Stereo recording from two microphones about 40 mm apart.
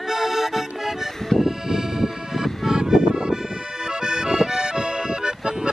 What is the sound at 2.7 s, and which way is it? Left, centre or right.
Music, centre.